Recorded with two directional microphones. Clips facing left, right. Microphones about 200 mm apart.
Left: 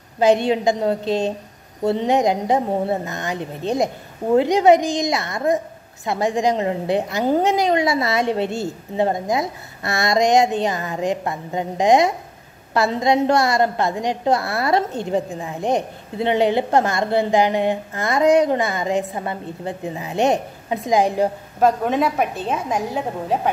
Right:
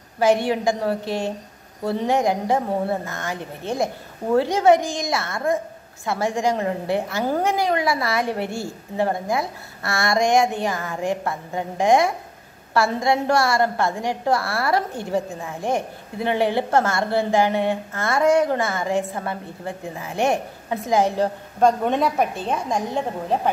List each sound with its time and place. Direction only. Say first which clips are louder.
0.2 s a woman's voice: left 3 dB; 20° left (ahead or behind); by 23.5 s 5° left (ahead or behind)